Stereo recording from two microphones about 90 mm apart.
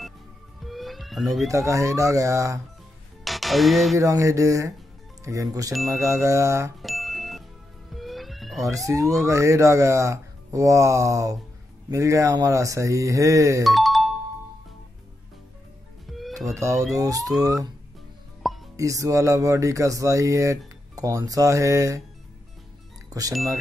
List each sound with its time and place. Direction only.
0.7 s fire alarm: centre (ahead or behind)
1.5 s speech: 35° right (ahead or behind)
3.3 s music: centre (ahead or behind)
4.0 s speech: 35° right (ahead or behind)
6.8 s music: centre (ahead or behind)
7.9 s fire alarm: centre (ahead or behind)
8.7 s speech: 35° right (ahead or behind)
13.7 s music: centre (ahead or behind)
16.1 s music: centre (ahead or behind)
16.3 s speech: 35° right (ahead or behind)
18.4 s music: centre (ahead or behind)
18.8 s speech: 40° right (ahead or behind)
23.0 s music: 40° right (ahead or behind)